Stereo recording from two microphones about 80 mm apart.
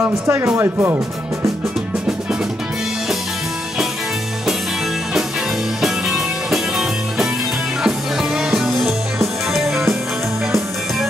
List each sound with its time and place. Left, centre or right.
0.0 s speech: right
5.8 s music: centre